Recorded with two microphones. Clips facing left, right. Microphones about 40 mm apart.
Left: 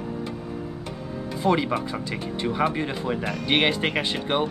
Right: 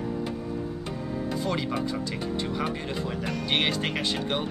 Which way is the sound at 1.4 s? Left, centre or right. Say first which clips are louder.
Left 9 dB; centre.